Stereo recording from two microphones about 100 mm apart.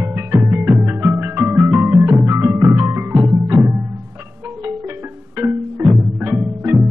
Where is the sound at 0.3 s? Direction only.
25° right (ahead or behind).